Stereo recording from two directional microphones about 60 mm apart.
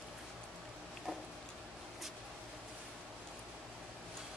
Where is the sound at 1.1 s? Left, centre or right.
Centre.